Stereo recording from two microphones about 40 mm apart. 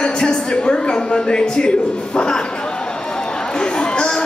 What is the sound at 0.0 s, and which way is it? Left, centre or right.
A woman's voice, left.